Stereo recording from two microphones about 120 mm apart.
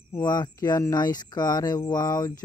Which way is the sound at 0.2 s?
35° left (ahead or behind).